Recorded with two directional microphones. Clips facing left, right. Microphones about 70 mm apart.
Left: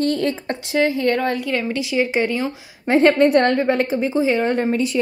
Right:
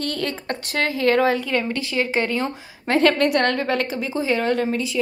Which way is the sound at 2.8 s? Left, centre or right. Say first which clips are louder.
Left 4 dB; left.